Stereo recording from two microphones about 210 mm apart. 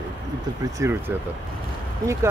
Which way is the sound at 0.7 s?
10° right (ahead or behind).